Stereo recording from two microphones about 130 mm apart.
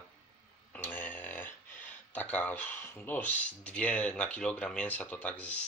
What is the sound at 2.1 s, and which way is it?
Speech, 10° left (ahead or behind).